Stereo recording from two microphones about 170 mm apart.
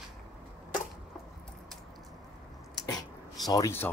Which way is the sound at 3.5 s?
15° left (ahead or behind).